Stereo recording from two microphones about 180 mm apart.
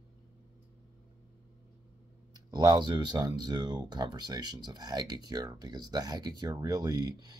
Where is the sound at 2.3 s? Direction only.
25° right (ahead or behind).